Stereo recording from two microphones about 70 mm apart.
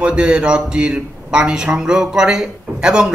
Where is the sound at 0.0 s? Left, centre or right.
Centre.